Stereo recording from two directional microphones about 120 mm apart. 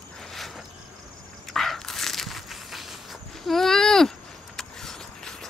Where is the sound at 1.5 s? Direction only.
Centre (ahead or behind).